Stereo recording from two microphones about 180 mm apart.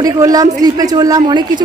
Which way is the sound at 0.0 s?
20° right (ahead or behind).